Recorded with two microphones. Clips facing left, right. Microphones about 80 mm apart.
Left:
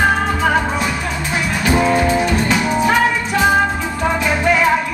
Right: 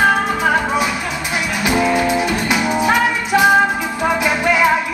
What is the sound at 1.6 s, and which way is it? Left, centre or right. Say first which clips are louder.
Music: left 1 dB; centre.